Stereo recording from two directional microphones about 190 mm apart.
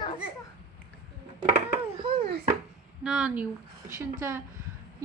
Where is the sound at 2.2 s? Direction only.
50° right (ahead or behind).